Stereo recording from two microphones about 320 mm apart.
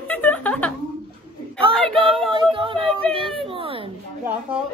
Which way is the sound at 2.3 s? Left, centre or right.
Centre.